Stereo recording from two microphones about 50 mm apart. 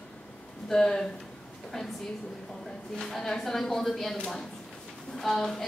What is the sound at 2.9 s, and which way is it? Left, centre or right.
A woman's voice, centre.